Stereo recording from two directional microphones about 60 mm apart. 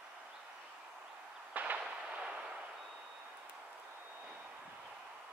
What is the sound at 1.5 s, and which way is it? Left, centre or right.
Artillery fire, right.